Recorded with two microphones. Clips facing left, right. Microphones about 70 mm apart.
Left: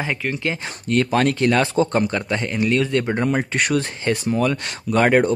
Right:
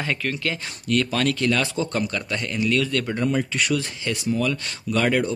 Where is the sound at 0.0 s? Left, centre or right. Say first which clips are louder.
Left 2 dB; centre.